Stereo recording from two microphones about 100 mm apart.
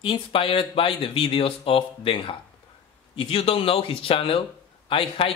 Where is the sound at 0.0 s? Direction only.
60° left (ahead or behind).